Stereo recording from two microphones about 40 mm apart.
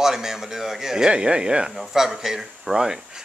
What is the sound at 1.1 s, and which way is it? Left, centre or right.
Speech, right.